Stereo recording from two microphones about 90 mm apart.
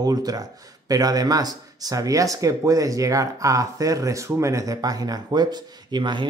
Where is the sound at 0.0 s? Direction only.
45° right (ahead or behind).